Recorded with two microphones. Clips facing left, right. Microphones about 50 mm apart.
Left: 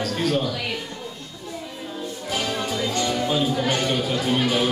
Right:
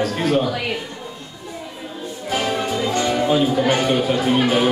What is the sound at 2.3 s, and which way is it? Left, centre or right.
Music, right.